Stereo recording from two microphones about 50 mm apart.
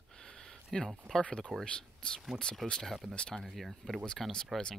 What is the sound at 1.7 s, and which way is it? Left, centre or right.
Speech, centre.